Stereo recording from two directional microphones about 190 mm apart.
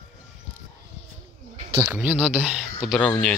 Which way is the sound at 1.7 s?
10° right (ahead or behind).